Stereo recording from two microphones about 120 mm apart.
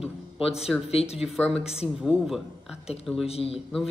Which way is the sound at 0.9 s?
55° left (ahead or behind).